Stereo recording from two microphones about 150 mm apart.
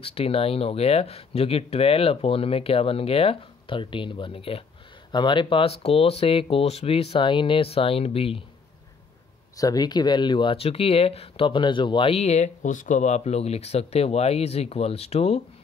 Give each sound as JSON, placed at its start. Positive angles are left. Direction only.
{"t": 0.0, "sound": "speech", "side_deg": 40}
{"t": 9.6, "sound": "speech", "side_deg": 25}